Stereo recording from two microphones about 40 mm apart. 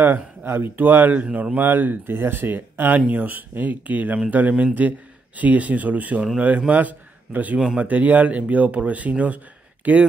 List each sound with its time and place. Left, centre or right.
0.0 s speech: right
1.6 s speech: right
3.1 s a man's voice: right
7.5 s speech: right
7.8 s speech: right